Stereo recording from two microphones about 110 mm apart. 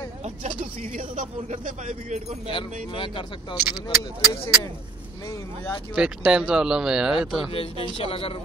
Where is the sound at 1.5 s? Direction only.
90° right.